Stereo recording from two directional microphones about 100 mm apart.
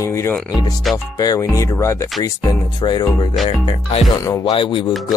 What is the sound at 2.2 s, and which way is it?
Speech, 45° left (ahead or behind).